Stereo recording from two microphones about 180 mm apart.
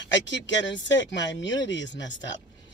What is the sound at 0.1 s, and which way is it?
Speech, 85° left.